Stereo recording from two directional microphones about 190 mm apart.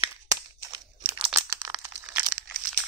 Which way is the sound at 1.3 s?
15° right (ahead or behind).